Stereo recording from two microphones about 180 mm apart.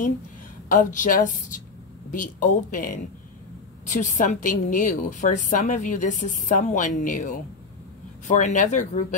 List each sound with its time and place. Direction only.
0.7 s a woman's voice: 45° left (ahead or behind)